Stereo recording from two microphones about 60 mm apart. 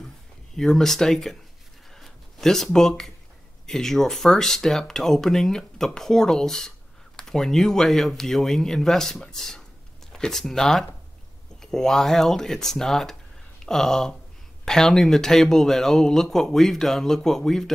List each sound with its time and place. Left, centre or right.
0.6 s speech: centre
2.0 s a sound: centre
3.6 s speech: centre